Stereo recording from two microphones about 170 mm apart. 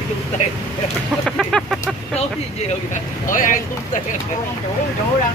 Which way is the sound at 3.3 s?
50° left (ahead or behind).